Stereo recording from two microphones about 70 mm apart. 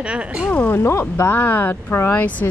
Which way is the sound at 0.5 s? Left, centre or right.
Left.